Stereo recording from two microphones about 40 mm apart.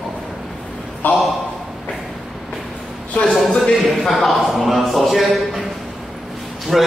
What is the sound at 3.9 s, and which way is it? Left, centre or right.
A man's voice, centre.